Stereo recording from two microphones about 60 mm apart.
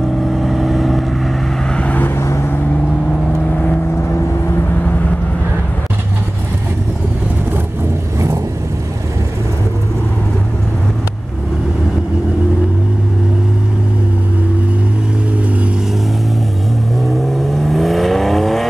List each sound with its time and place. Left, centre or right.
0.2 s vehicle: centre
1.7 s vehicle: left
2.0 s vehicle: left
17.0 s vehicle: centre